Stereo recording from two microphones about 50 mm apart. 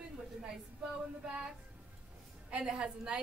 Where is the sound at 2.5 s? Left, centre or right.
Right.